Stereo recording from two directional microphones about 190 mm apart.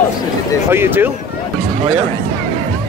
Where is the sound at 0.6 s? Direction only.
10° right (ahead or behind).